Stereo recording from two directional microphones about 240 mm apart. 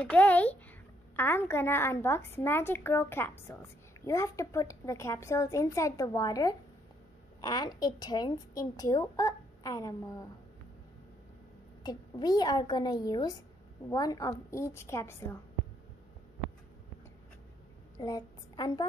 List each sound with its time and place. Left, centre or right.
0.0 s a woman's voice: centre
11.8 s a woman's voice: centre
17.9 s a woman's voice: centre